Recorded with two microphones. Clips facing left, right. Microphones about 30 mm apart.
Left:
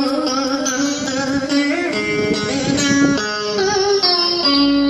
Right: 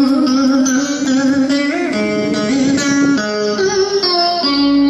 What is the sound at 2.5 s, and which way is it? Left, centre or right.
Music, left.